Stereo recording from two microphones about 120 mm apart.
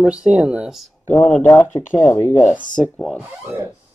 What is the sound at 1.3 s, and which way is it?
Speech, 15° left (ahead or behind).